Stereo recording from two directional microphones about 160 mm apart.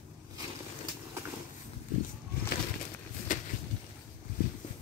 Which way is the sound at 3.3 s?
55° left (ahead or behind).